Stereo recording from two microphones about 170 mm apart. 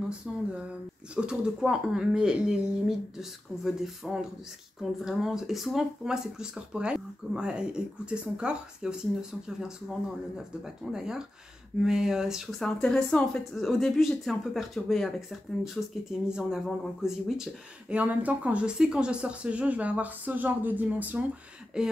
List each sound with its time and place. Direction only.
1.1 s speech: 5° right (ahead or behind)